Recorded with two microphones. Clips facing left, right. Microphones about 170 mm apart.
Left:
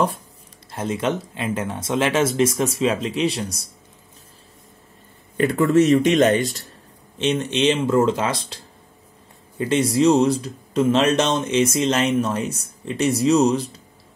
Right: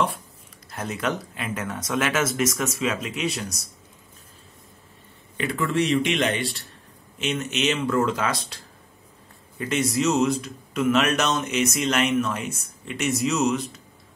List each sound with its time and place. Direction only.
0.7 s speech: 25° left (ahead or behind)
5.4 s speech: 40° left (ahead or behind)
7.2 s speech: 30° left (ahead or behind)